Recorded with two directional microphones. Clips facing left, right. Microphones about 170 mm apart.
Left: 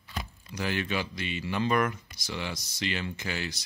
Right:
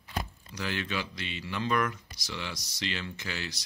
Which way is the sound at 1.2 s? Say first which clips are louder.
Left 4 dB; 10° left (ahead or behind).